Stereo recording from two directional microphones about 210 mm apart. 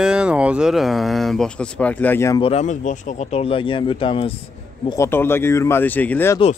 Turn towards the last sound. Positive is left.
turn(degrees=10)  # may be behind; listen again after turning